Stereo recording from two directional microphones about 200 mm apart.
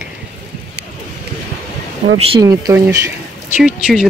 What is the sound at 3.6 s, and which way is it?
Speech, 5° right (ahead or behind).